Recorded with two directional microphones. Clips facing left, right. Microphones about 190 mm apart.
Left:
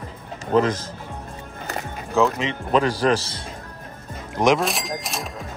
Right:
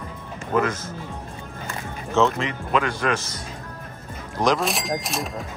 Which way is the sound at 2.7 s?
35° left (ahead or behind).